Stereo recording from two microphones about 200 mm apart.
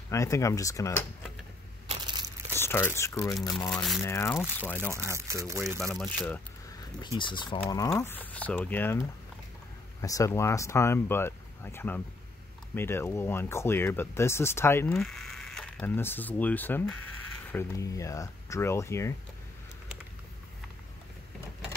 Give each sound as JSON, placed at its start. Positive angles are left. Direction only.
{"t": 0.1, "sound": "speech", "side_deg": 15}
{"t": 1.9, "sound": "crushing", "side_deg": -20}
{"t": 2.5, "sound": "speech", "side_deg": 10}
{"t": 4.9, "sound": "speech", "side_deg": -15}
{"t": 5.8, "sound": "speech", "side_deg": 5}
{"t": 7.2, "sound": "speech", "side_deg": 25}
{"t": 10.0, "sound": "speech", "side_deg": 15}